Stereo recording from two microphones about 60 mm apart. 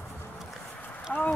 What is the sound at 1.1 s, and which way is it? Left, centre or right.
Clip-clop, centre.